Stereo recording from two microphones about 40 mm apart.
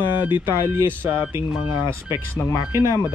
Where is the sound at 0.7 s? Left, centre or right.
Right.